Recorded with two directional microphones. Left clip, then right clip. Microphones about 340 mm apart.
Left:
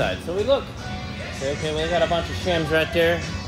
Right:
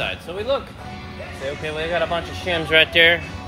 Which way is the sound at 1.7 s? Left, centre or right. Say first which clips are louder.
Left 1 dB; centre.